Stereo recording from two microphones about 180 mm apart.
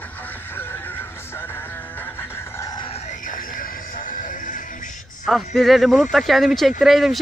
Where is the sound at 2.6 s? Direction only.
25° left (ahead or behind).